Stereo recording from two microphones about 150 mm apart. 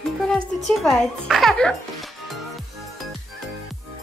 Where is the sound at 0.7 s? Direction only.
5° left (ahead or behind).